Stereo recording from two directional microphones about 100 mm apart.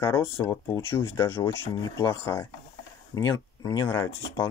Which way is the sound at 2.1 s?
25° left (ahead or behind).